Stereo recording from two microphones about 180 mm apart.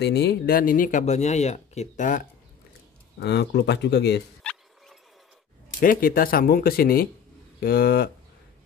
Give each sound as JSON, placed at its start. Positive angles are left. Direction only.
{"t": 0.0, "sound": "speech", "side_deg": 65}
{"t": 3.2, "sound": "speech", "side_deg": 70}
{"t": 4.4, "sound": "turkey", "side_deg": 5}
{"t": 5.8, "sound": "speech", "side_deg": 50}